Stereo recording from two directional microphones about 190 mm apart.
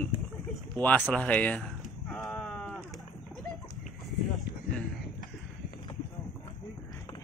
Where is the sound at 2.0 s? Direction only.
5° left (ahead or behind).